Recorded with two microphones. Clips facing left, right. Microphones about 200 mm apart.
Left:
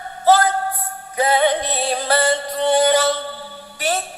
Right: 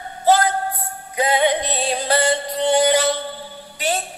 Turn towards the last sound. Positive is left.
turn(degrees=-15)  # may be behind; listen again after turning